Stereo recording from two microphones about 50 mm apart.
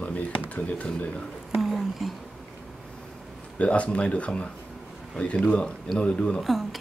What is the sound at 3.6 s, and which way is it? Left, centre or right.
Speech, left.